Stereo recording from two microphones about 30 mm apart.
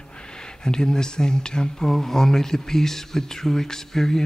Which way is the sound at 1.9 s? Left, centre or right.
Centre.